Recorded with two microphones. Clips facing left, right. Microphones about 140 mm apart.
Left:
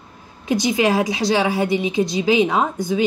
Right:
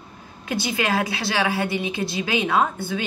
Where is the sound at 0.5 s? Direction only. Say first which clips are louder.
Left 6 dB; 20° left (ahead or behind).